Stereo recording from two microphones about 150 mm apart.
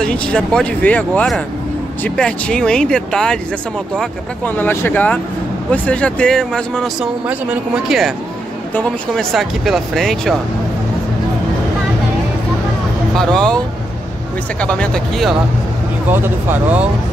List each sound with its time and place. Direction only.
0.0 s speech: 5° left (ahead or behind)
13.1 s speech: 5° left (ahead or behind)
14.6 s speech: 5° left (ahead or behind)
16.1 s speech: 15° right (ahead or behind)